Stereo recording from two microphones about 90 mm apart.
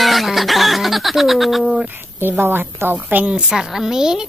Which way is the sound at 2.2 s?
20° right (ahead or behind).